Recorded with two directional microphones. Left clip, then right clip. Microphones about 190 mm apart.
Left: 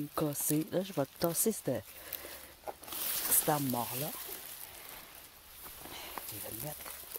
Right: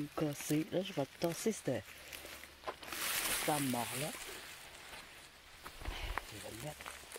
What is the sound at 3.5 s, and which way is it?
Speech, 40° left (ahead or behind).